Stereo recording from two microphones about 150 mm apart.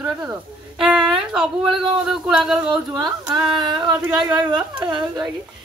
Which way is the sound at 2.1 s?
5° right (ahead or behind).